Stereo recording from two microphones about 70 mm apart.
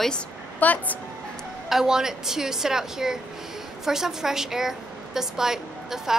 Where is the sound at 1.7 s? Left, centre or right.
Centre.